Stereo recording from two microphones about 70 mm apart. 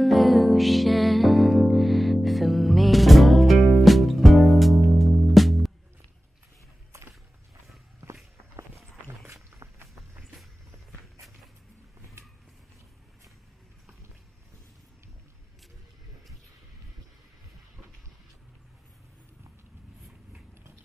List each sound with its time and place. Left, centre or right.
0.0 s music: centre
9.0 s walk: right
12.2 s vehicle: right